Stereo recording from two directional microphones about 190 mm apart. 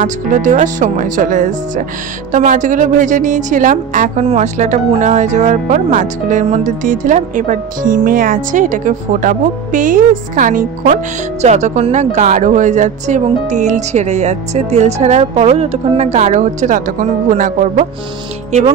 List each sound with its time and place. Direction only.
0.0 s a woman's voice: 40° right (ahead or behind)